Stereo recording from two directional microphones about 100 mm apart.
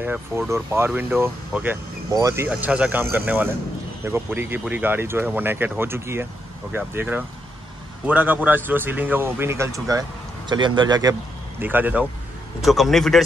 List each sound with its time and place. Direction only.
0.5 s speech: 25° right (ahead or behind)
2.1 s speech: 30° right (ahead or behind)
2.5 s speech: 10° right (ahead or behind); by 10.0 s 35° right (ahead or behind)
10.4 s speech: 50° right (ahead or behind)
11.6 s speech: 15° right (ahead or behind)
12.6 s speech: centre (ahead or behind)